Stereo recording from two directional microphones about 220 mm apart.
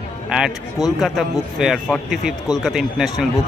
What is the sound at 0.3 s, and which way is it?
A man's voice, 5° right (ahead or behind).